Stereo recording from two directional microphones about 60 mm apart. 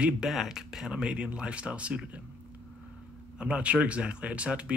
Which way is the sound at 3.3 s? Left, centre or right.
Centre.